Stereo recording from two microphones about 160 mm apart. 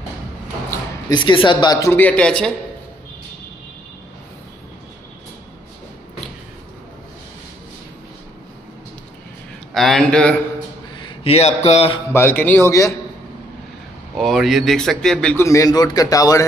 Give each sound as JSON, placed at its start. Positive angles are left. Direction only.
{"t": 1.1, "sound": "speech", "side_deg": 30}
{"t": 9.8, "sound": "speech", "side_deg": 0}
{"t": 11.0, "sound": "a man's voice", "side_deg": 35}
{"t": 12.1, "sound": "a man's voice", "side_deg": 15}
{"t": 14.1, "sound": "speech", "side_deg": 0}
{"t": 15.4, "sound": "speech", "side_deg": 20}